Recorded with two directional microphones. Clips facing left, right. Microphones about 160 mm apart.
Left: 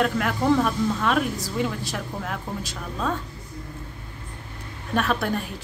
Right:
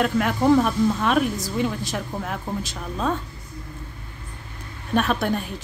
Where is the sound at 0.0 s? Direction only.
20° right (ahead or behind).